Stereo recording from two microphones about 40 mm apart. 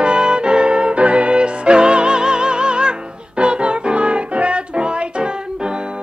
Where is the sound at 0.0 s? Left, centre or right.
Right.